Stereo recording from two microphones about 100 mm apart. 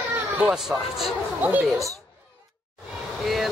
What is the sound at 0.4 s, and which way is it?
Speech, 10° right (ahead or behind).